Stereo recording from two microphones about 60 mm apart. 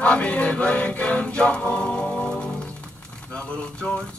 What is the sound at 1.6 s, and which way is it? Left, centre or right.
Music, left.